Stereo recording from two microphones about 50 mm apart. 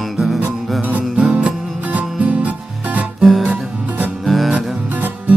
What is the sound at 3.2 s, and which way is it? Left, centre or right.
Music, centre.